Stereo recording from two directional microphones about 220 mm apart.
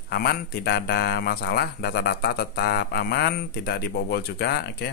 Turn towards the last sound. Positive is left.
turn(degrees=50)  # may be behind; listen again after turning